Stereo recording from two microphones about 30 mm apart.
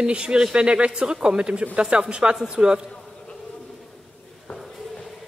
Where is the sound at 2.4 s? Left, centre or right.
Right.